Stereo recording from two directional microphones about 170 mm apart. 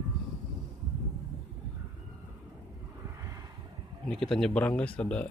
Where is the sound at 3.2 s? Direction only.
20° right (ahead or behind).